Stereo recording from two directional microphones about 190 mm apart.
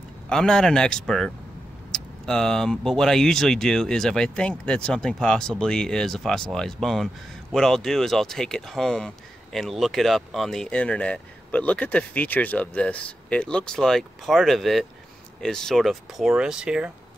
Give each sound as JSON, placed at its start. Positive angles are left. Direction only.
{"t": 0.3, "sound": "speech", "side_deg": 5}